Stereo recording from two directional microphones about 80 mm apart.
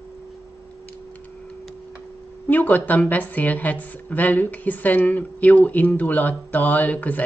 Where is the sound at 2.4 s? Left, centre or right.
Left.